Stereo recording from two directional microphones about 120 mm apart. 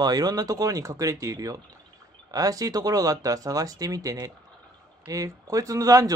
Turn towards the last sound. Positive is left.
turn(degrees=-30)  # may be behind; listen again after turning